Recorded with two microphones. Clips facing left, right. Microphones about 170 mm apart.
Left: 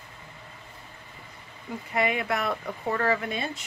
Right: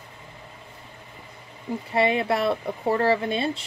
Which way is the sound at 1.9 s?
30° right (ahead or behind).